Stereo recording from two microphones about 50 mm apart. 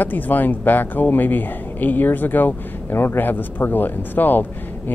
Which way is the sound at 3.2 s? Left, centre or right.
Left.